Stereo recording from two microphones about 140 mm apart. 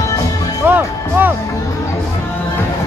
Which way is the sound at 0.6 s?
15° right (ahead or behind).